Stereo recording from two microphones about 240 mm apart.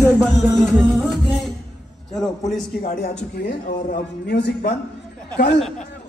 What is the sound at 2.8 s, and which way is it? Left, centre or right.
A man's voice, left.